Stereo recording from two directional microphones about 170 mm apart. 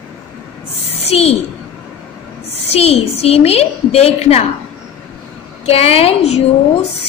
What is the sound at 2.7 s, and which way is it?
A woman's voice, 35° left (ahead or behind).